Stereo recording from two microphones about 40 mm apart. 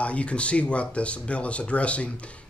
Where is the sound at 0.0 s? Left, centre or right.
Left.